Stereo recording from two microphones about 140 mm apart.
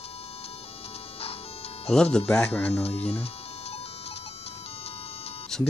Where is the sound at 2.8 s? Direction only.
45° left (ahead or behind).